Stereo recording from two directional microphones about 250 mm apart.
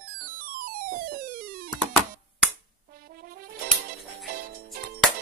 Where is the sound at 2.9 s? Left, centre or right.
Right.